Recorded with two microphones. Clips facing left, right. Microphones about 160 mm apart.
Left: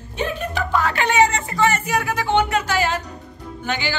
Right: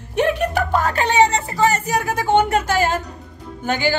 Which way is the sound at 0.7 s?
40° right (ahead or behind).